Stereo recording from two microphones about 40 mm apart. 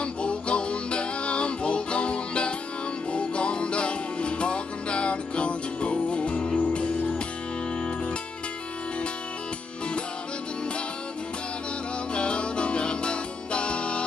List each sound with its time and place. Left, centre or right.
0.0 s music: left
12.1 s music: left